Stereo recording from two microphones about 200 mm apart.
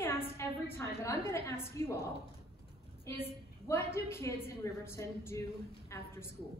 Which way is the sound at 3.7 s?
15° left (ahead or behind).